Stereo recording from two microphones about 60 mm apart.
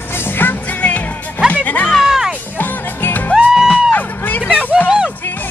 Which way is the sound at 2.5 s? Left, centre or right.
Left.